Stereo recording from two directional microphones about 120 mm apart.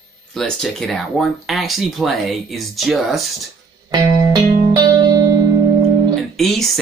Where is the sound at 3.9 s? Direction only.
30° right (ahead or behind).